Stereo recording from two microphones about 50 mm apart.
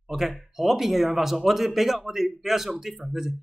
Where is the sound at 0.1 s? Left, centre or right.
Centre.